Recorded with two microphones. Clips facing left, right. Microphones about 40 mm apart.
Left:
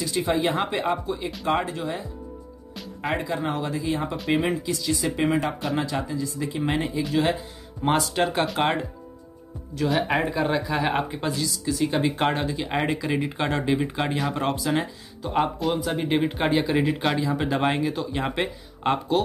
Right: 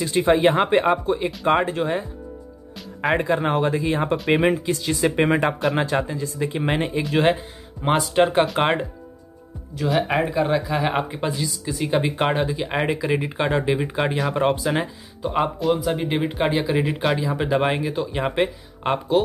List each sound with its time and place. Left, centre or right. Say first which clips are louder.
0.0 s speech: right 6 dB; right
3.2 s speech: right 6 dB; right
7.8 s speech: right 4 dB; centre
9.8 s speech: right 2 dB; centre
14.3 s speech: right 4 dB; centre
15.2 s speech: right 3 dB; centre